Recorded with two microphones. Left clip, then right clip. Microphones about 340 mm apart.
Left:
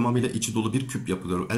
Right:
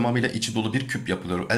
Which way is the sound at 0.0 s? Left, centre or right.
Centre.